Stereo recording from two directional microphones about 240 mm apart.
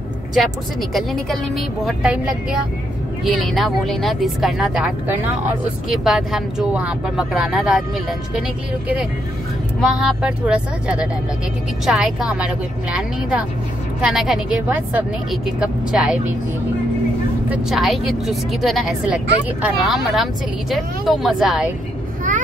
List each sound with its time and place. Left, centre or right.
0.9 s speech: centre
17.5 s speech: centre